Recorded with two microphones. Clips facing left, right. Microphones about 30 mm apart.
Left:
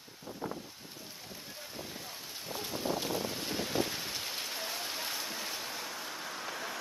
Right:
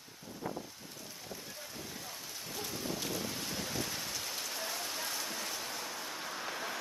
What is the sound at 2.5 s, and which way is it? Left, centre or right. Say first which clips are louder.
Boat: left 5 dB; centre.